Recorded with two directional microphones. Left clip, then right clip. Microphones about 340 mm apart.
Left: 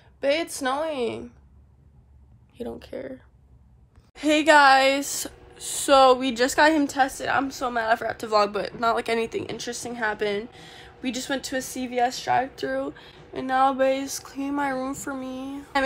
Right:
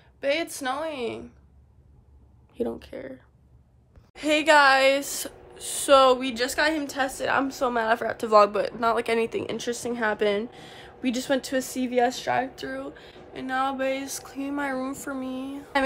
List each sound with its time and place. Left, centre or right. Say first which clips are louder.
0.2 s speech: left 2 dB; centre
2.5 s speech: right 5 dB; centre
2.8 s a woman's voice: left 3 dB; centre
12.5 s speech: left 6 dB; centre